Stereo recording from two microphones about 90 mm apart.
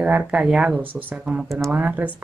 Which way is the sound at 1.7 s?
15° right (ahead or behind).